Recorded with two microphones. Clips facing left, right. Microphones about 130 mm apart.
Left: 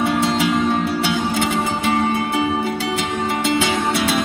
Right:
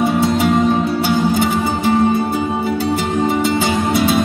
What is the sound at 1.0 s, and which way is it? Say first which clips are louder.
Music: right 5 dB; 60° left (ahead or behind).